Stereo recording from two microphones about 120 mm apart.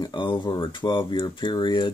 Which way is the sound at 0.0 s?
40° left (ahead or behind).